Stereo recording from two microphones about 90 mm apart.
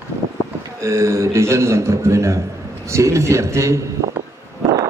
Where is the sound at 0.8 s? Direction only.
30° right (ahead or behind).